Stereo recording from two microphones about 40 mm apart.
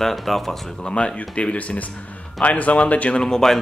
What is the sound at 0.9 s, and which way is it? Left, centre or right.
Speech, left.